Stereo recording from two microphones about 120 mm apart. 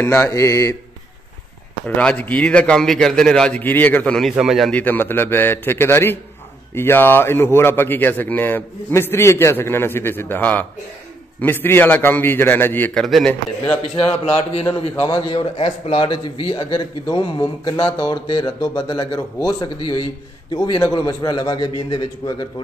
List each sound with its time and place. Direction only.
0.0 s a man's voice: 20° left (ahead or behind)
2.0 s a man's voice: 10° left (ahead or behind)
4.4 s speech: centre (ahead or behind)
4.7 s a man's voice: 15° left (ahead or behind)
12.9 s speech: 5° left (ahead or behind)
14.2 s a man's voice: 55° left (ahead or behind); by 19.7 s 35° left (ahead or behind)
21.0 s speech: 30° left (ahead or behind)